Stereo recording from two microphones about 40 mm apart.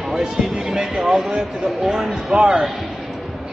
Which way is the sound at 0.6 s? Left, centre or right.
Centre.